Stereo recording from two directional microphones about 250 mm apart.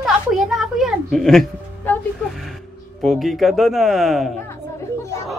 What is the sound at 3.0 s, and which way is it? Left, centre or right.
A man's voice, centre.